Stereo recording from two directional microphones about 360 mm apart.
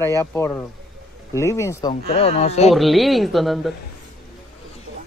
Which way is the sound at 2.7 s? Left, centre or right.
Centre.